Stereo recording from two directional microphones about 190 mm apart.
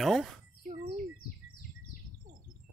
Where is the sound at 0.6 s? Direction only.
35° right (ahead or behind).